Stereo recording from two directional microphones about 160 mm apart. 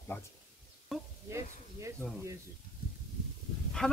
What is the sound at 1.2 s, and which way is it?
Speech, 20° right (ahead or behind).